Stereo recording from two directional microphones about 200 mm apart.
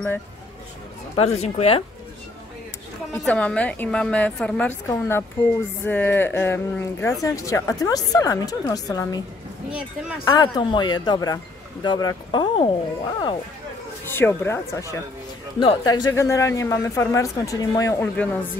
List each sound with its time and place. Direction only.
1.1 s speech: 30° left (ahead or behind)
3.1 s speech: 5° left (ahead or behind)
9.7 s speech: 5° right (ahead or behind)
10.2 s speech: 20° left (ahead or behind)
14.0 s speech: 10° left (ahead or behind)